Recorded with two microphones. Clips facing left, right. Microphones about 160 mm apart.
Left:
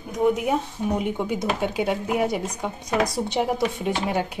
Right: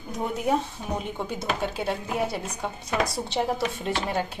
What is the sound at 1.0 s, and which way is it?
Speech, 15° left (ahead or behind).